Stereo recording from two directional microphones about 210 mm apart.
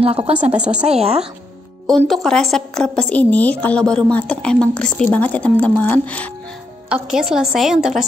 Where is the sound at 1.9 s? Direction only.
Centre (ahead or behind).